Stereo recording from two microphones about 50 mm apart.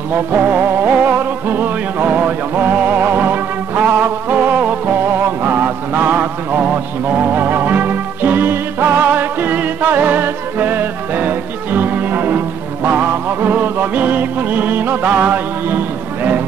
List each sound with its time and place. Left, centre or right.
0.1 s music: right
5.4 s music: right
7.3 s music: right